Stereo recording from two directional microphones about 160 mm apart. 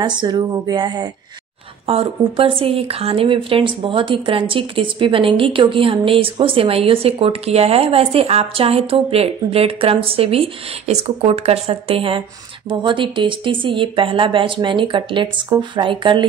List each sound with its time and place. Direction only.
0.0 s speech: 30° right (ahead or behind)
1.9 s a woman's voice: 35° right (ahead or behind)